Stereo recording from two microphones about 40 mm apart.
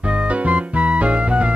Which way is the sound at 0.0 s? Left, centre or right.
Right.